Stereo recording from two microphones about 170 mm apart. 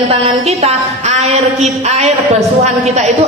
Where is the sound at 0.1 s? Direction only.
40° right (ahead or behind).